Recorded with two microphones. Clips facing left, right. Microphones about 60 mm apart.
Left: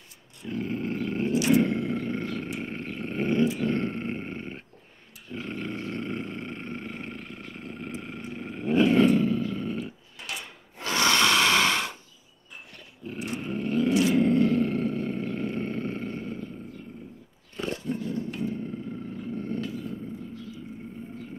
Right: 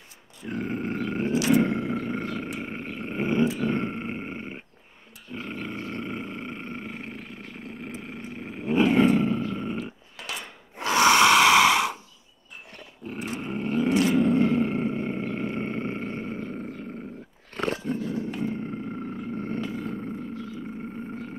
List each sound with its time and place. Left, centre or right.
0.5 s roaring cats: right
1.6 s roar: right
10.8 s a sound: centre
13.0 s dog: right
14.3 s wild animals: right
16.4 s a sound: right
17.6 s dog: right
18.4 s roar: right
19.8 s wild animals: right